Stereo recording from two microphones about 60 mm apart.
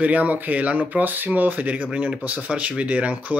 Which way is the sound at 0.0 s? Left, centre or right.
Right.